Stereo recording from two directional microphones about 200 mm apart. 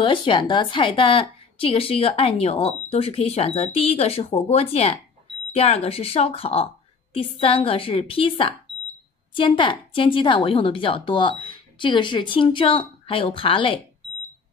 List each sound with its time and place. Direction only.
0.0 s a woman's voice: 25° left (ahead or behind)